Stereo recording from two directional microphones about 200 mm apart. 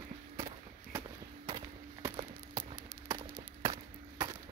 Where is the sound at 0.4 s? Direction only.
15° right (ahead or behind).